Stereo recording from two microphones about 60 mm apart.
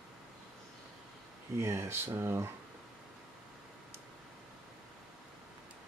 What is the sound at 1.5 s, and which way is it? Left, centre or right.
Speech, right.